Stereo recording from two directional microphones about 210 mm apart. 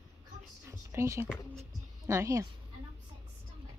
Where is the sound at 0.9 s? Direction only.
10° right (ahead or behind).